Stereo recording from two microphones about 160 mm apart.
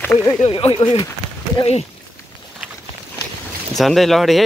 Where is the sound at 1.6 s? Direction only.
40° left (ahead or behind).